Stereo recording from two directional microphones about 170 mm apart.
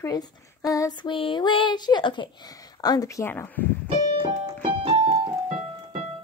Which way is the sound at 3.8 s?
30° right (ahead or behind).